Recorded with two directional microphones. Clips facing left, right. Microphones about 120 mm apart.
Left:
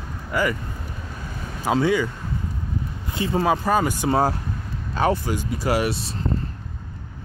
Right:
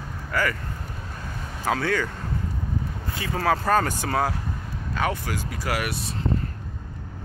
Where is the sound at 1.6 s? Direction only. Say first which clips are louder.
Left 4 dB; 15° left (ahead or behind).